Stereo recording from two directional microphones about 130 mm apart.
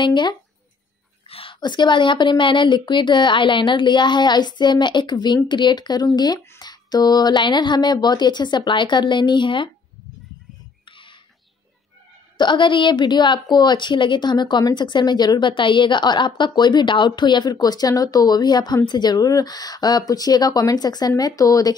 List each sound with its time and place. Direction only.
0.0 s a woman's voice: 35° left (ahead or behind)
10.9 s a sound: 40° left (ahead or behind)
12.4 s a woman's voice: 35° left (ahead or behind)